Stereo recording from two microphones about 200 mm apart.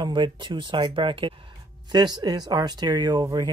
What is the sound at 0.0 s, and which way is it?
Speech, 25° right (ahead or behind).